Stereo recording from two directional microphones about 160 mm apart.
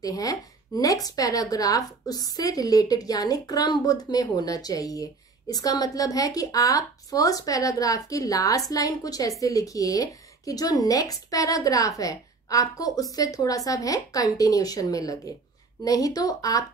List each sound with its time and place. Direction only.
0.0 s speech: 20° left (ahead or behind)